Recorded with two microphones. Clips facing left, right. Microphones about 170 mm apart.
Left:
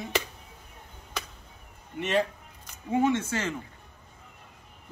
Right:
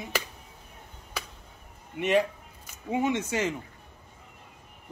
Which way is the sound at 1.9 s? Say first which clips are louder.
Right 2 dB; 15° right (ahead or behind).